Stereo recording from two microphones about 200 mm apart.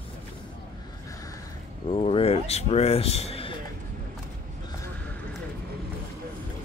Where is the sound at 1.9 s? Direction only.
30° left (ahead or behind).